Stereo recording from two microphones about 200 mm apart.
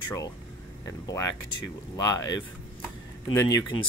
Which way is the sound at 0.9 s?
15° left (ahead or behind).